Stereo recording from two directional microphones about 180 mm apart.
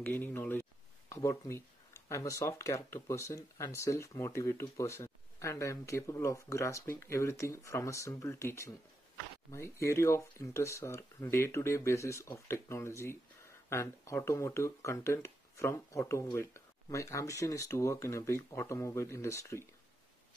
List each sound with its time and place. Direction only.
0.0 s speech: 10° left (ahead or behind)